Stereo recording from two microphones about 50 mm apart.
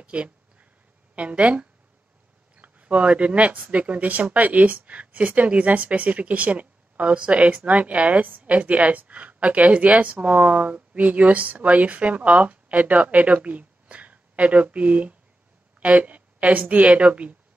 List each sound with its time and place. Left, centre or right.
0.0 s speech: right